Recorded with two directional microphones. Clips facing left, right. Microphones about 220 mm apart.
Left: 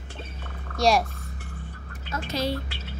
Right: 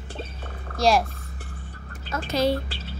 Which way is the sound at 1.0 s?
30° right (ahead or behind).